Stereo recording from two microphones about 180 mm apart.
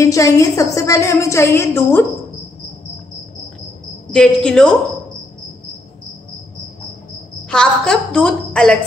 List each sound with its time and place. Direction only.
0.0 s a woman's voice: 15° left (ahead or behind)
4.1 s a woman's voice: 5° left (ahead or behind)
7.4 s a woman's voice: 5° left (ahead or behind)